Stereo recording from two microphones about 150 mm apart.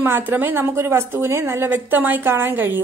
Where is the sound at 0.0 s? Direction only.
15° right (ahead or behind).